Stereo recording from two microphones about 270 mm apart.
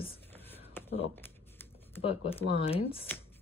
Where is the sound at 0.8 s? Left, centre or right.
Centre.